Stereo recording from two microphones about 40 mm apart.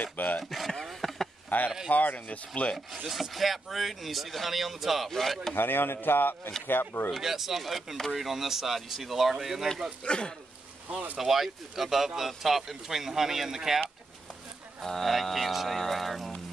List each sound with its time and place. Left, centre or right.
0.0 s a sound: left
0.4 s speech: centre
0.8 s a sound: centre
1.5 s speech: left
1.9 s speech: left
3.1 s speech: centre
5.1 s speech: centre
5.5 s speech: left
7.1 s speech: centre
10.0 s speech: left
11.1 s speech: centre
14.8 s speech: centre